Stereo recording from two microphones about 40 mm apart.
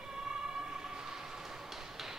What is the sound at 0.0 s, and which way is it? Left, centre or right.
Train, centre.